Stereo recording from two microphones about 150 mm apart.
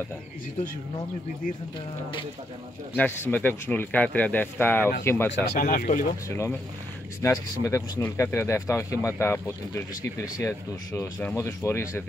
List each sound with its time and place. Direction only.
3.0 s speech: 10° left (ahead or behind)
5.5 s speech: 60° left (ahead or behind)
6.2 s speech: 20° left (ahead or behind)